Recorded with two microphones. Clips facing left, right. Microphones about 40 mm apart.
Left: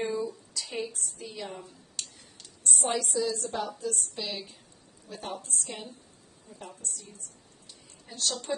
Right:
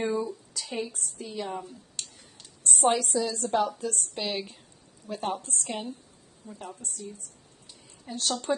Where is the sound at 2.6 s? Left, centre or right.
Right.